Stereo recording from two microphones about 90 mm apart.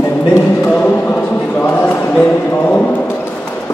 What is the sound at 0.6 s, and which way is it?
Basketball bounce, 15° left (ahead or behind).